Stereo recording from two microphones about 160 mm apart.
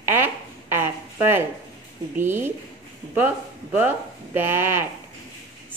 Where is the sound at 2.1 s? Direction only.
15° right (ahead or behind).